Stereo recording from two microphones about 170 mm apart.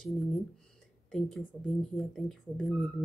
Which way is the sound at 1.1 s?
5° left (ahead or behind).